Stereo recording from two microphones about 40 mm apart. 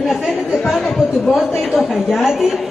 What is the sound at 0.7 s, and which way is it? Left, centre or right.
Speech, centre.